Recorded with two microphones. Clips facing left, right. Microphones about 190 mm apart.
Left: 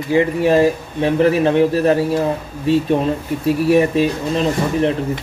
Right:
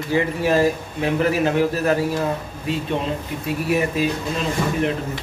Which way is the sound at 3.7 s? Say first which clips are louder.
Left 7 dB; 30° left (ahead or behind).